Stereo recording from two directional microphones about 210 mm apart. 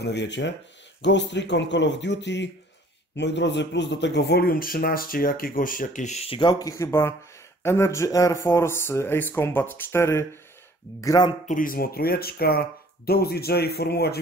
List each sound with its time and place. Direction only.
0.0 s speech: 55° left (ahead or behind); by 11.3 s 15° left (ahead or behind)
11.4 s speech: 40° left (ahead or behind)